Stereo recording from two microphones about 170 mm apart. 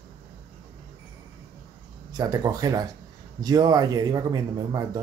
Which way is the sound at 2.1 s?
20° right (ahead or behind).